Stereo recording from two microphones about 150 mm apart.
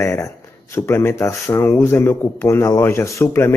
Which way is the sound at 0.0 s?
20° left (ahead or behind).